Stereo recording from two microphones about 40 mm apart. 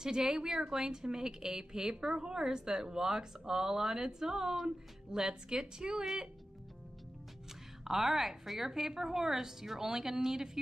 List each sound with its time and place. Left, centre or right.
0.0 s a woman's voice: centre
7.8 s a woman's voice: centre